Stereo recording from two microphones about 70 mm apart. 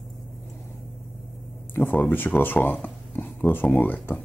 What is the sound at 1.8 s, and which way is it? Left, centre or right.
Speech, left.